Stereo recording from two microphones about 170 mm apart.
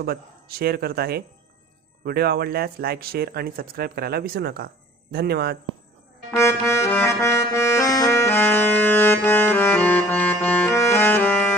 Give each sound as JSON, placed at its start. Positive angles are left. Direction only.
{"t": 0.0, "sound": "speech", "side_deg": -65}
{"t": 6.3, "sound": "music", "side_deg": 15}